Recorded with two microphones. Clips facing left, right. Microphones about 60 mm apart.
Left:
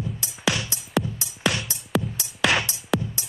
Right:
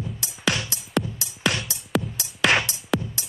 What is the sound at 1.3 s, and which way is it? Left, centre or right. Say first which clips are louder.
Music: even; centre.